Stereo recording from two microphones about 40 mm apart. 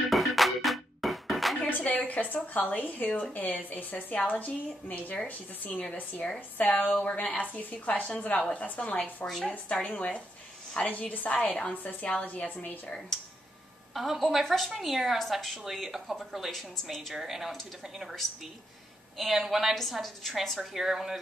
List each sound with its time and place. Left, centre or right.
0.1 s music: centre
1.9 s a woman's voice: left
7.0 s a woman's voice: left
13.9 s a woman's voice: centre
17.1 s speech: centre
19.1 s a woman's voice: centre